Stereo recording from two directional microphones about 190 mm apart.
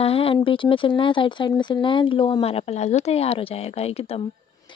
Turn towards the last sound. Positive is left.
turn(degrees=30)  # may be behind; listen again after turning